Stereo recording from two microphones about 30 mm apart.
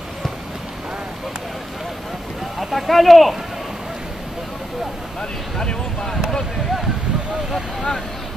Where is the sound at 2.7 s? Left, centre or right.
Centre.